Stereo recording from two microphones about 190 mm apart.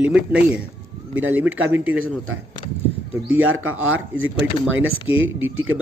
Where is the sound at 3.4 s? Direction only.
90° right.